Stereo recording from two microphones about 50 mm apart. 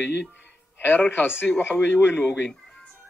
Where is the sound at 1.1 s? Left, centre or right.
Left.